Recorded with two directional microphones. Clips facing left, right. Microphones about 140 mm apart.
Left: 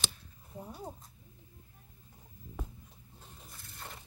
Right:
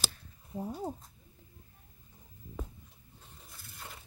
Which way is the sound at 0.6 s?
30° right (ahead or behind).